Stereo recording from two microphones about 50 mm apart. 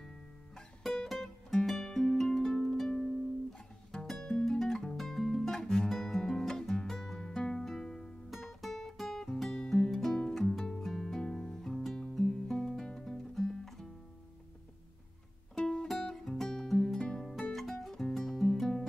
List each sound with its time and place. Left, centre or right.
0.6 s music: centre
4.0 s music: centre
15.5 s music: centre
17.5 s music: centre